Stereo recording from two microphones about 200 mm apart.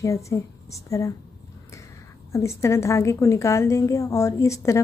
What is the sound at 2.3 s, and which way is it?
A woman's voice, 15° left (ahead or behind).